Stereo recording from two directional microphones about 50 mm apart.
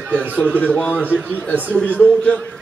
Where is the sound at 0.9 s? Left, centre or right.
Right.